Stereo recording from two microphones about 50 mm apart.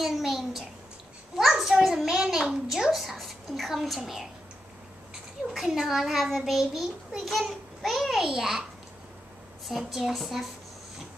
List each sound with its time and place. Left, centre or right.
0.0 s a sound: centre
2.7 s a child's voice: centre
5.5 s a child's voice: centre
9.7 s a child's voice: centre